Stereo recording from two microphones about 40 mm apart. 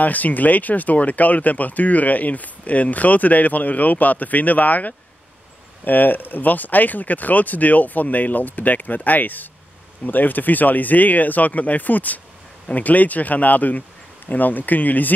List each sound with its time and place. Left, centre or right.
0.0 s speech: left